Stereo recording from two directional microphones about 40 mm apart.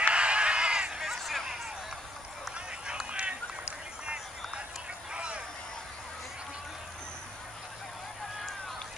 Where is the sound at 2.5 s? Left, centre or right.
Right.